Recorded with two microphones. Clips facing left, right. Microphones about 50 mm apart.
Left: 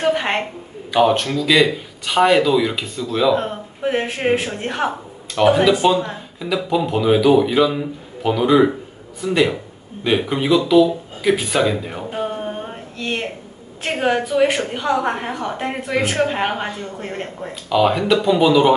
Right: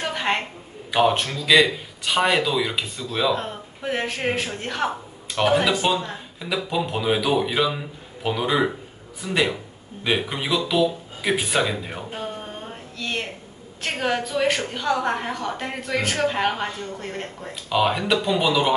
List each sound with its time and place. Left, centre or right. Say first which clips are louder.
0.0 s a sound: left 6 dB; left
0.9 s a man's voice: left 4 dB; centre
3.3 s a woman's voice: left 7 dB; left
5.4 s a man's voice: left 6 dB; centre
11.6 s a man's voice: left 6 dB; centre
12.1 s a sound: left 7 dB; left
13.8 s a woman's voice: left 5 dB; left
17.6 s a man's voice: left 5 dB; centre